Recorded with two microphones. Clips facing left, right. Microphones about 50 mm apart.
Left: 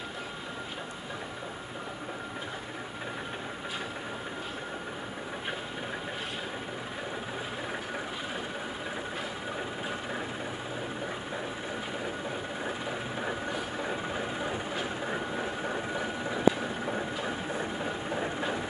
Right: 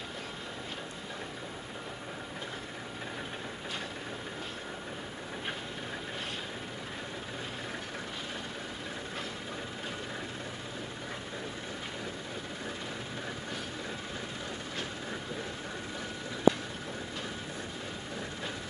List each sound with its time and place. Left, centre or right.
13.2 s vehicle: left